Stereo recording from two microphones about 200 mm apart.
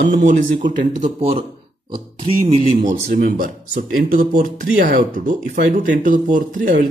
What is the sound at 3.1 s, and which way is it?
Speech, 45° right (ahead or behind).